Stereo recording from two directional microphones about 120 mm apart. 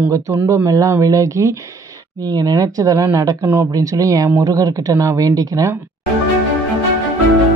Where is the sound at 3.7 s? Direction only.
30° right (ahead or behind).